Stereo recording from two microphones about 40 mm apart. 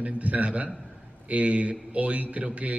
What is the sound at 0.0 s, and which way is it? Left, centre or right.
A man's voice, right.